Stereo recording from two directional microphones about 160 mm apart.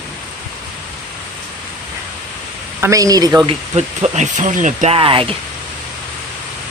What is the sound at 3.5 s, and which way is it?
Speech, 40° right (ahead or behind).